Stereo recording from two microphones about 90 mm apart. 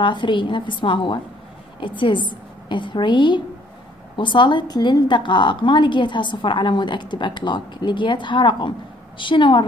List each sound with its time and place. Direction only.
0.0 s a woman's voice: 65° left (ahead or behind)